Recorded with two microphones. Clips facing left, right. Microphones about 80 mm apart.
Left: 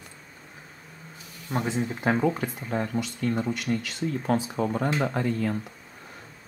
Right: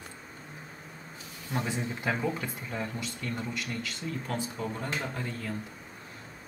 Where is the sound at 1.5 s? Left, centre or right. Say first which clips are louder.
Left 5 dB; left.